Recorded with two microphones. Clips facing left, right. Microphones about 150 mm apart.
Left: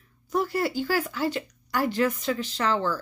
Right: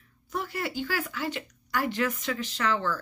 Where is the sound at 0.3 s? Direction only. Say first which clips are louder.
Left 7 dB; 35° left (ahead or behind).